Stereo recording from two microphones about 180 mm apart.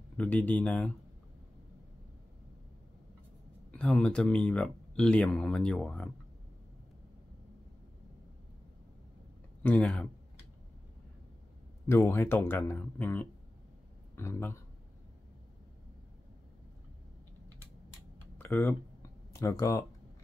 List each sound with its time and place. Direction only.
0.2 s speech: 10° left (ahead or behind)
3.7 s speech: 5° left (ahead or behind)
9.6 s speech: 10° left (ahead or behind)
11.9 s speech: 15° left (ahead or behind)
18.4 s speech: 10° left (ahead or behind)